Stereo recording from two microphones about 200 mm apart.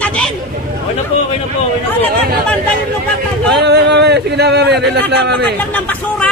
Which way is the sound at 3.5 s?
60° right (ahead or behind).